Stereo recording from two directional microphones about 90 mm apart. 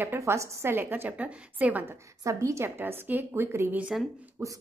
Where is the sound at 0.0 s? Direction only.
30° right (ahead or behind).